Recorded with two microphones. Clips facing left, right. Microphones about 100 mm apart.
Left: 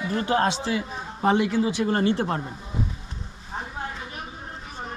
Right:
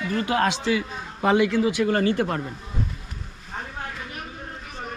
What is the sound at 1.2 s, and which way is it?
Speech, 25° left (ahead or behind).